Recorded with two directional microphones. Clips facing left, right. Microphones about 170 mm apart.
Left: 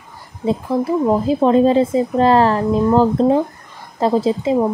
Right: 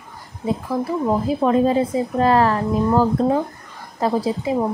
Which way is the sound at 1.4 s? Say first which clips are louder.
Left 4 dB; 25° left (ahead or behind).